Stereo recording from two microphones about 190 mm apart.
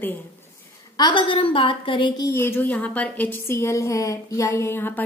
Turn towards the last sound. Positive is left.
turn(degrees=10)  # may be behind; listen again after turning